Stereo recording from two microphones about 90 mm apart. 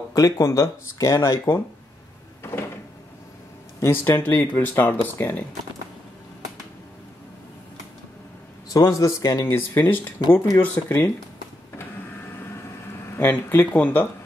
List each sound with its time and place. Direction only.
0.1 s speech: 45° left (ahead or behind)
3.8 s speech: 25° left (ahead or behind)
8.7 s speech: 40° left (ahead or behind)
9.5 s speech: 20° left (ahead or behind)
13.2 s speech: 25° left (ahead or behind)